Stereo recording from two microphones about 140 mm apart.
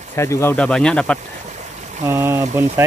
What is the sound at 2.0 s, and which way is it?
Speech, 20° right (ahead or behind).